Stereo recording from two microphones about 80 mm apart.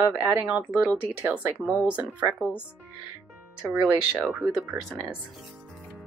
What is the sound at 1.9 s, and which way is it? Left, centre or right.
Speech, centre.